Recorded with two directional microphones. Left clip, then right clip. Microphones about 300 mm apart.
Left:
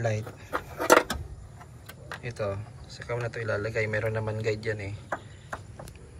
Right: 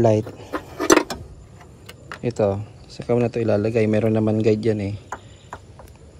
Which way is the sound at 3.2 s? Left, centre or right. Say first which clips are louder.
Right 7 dB; centre.